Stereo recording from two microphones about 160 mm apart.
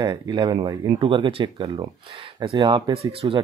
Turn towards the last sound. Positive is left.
turn(degrees=-35)  # may be behind; listen again after turning